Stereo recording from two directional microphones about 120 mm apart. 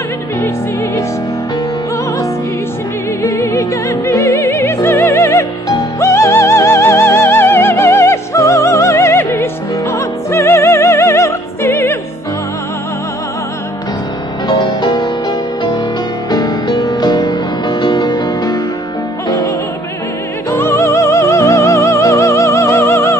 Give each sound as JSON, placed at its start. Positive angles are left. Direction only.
{"t": 3.2, "sound": "music", "side_deg": 25}
{"t": 14.5, "sound": "music", "side_deg": 40}
{"t": 20.5, "sound": "music", "side_deg": 20}